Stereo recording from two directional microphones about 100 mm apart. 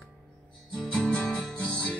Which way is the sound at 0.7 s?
10° left (ahead or behind).